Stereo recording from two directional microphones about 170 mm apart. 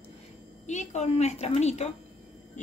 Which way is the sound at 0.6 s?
45° left (ahead or behind).